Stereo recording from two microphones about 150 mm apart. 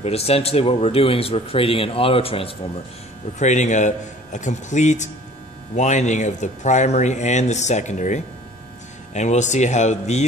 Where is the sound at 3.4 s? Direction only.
50° left (ahead or behind).